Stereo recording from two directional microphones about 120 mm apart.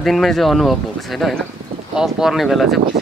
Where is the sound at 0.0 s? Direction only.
Centre (ahead or behind).